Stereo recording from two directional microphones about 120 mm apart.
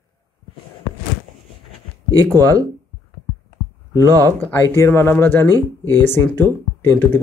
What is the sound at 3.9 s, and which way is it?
Speech, 30° right (ahead or behind).